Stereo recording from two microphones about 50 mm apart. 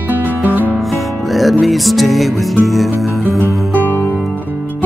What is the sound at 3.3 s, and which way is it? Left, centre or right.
Music, right.